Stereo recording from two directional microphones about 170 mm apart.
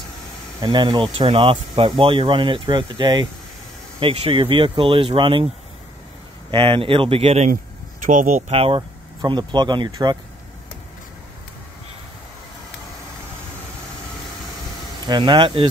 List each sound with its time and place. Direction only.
0.6 s speech: 30° right (ahead or behind)
6.5 s speech: 30° right (ahead or behind)
8.0 s speech: 50° right (ahead or behind); by 10.1 s 25° right (ahead or behind)
15.0 s speech: 25° right (ahead or behind)